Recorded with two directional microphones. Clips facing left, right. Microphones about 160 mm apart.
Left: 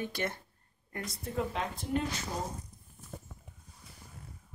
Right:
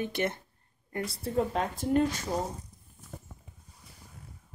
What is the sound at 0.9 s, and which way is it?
Speech, 30° right (ahead or behind).